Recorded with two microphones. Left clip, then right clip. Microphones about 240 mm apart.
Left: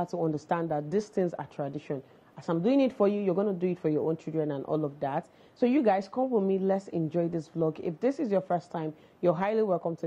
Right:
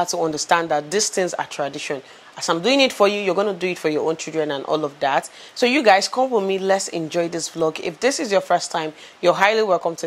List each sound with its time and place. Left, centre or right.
0.3 s a woman's voice: centre
6.1 s speech: right
6.4 s a woman's voice: centre